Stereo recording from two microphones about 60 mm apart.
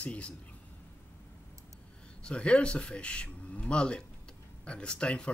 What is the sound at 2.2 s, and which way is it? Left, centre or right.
Speech, centre.